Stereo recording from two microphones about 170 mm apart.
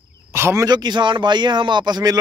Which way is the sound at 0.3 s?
15° right (ahead or behind).